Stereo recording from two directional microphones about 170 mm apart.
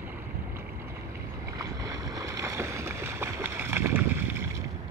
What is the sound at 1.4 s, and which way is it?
Boat, 20° right (ahead or behind).